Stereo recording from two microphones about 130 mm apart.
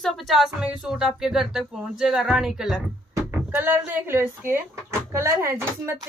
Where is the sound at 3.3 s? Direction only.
15° right (ahead or behind).